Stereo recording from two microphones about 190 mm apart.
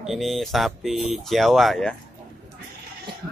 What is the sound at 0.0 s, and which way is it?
Speech, centre (ahead or behind).